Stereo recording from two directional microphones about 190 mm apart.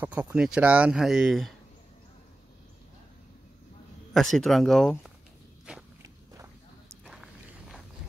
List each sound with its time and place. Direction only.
0.0 s speech: 5° right (ahead or behind)
4.1 s speech: centre (ahead or behind)
6.0 s walk: 15° right (ahead or behind)
7.1 s walk: centre (ahead or behind)